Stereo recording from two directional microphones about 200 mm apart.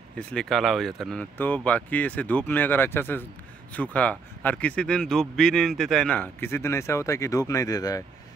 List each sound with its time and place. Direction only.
0.3 s speech: centre (ahead or behind)